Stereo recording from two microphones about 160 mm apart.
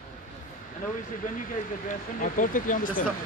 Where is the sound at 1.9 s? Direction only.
55° left (ahead or behind).